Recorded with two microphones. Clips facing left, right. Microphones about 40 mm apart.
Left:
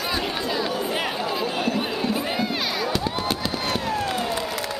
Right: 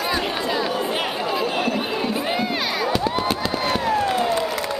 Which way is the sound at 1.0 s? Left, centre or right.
Centre.